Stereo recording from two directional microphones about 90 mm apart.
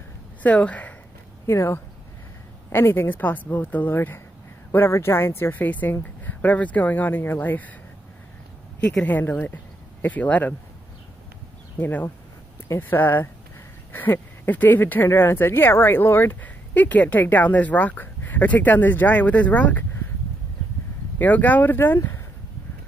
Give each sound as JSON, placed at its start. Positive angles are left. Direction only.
{"t": 0.4, "sound": "speech", "side_deg": 15}
{"t": 1.5, "sound": "speech", "side_deg": 30}
{"t": 9.0, "sound": "speech", "side_deg": 20}
{"t": 11.8, "sound": "speech", "side_deg": 20}
{"t": 21.2, "sound": "speech", "side_deg": 20}